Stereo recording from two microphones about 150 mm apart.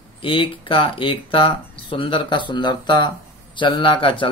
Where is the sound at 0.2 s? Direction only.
35° left (ahead or behind).